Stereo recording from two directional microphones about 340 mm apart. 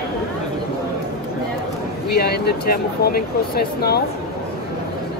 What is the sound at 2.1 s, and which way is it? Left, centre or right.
Speech, left.